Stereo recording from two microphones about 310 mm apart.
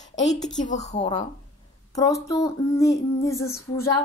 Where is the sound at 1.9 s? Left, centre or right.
Centre.